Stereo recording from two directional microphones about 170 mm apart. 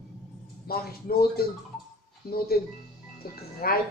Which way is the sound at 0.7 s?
65° left (ahead or behind).